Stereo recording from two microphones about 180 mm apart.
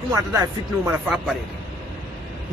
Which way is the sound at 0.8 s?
5° right (ahead or behind).